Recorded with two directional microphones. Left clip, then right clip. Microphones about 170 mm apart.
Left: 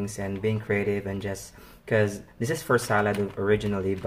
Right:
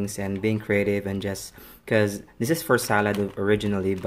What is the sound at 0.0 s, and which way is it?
Speech, 45° right (ahead or behind).